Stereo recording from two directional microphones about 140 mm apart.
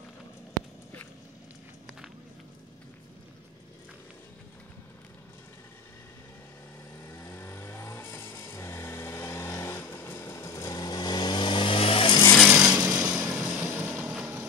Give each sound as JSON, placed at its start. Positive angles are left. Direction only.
{"t": 7.2, "sound": "vehicle", "side_deg": 20}
{"t": 12.4, "sound": "a sound", "side_deg": -5}
{"t": 12.8, "sound": "vehicle", "side_deg": -15}